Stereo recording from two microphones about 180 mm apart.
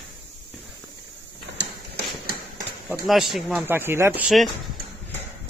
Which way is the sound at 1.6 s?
60° right (ahead or behind).